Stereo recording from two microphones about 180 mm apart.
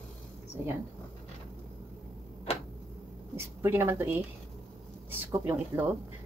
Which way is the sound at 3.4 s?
15° right (ahead or behind).